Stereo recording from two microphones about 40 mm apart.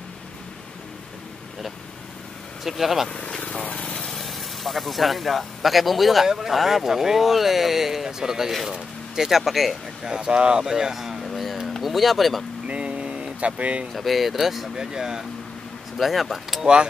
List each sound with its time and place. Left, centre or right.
2.6 s speech: centre
3.3 s vehicle: left
3.8 s lawn mower: centre
4.2 s speech: centre
9.4 s speech: centre
10.0 s speech: right
10.6 s speech: centre
11.2 s a sound: centre
11.8 s speech: centre
12.6 s vehicle: right
13.9 s speech: centre
14.8 s speech: centre
16.0 s speech: centre